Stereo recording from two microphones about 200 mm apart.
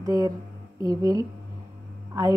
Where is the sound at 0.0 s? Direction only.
15° right (ahead or behind).